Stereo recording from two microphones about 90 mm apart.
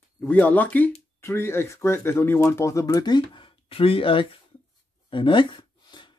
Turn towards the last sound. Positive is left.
turn(degrees=60)  # may be behind; listen again after turning